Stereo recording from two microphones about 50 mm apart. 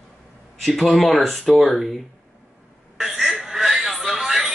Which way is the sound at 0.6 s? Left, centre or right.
Centre.